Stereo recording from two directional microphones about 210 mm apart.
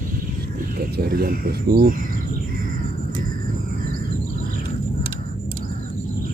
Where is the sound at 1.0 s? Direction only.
45° right (ahead or behind).